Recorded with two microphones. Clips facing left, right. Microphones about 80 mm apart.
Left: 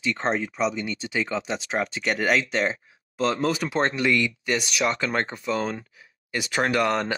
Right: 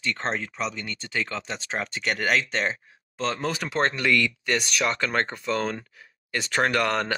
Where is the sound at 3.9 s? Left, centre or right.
Centre.